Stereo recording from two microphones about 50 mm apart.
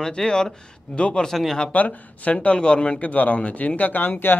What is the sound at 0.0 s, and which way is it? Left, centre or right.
A man's voice, centre.